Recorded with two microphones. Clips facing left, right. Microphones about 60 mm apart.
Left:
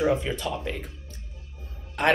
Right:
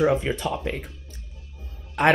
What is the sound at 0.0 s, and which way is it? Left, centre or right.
Speech, right.